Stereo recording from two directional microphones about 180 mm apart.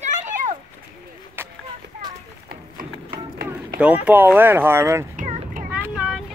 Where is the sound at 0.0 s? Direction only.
45° right (ahead or behind).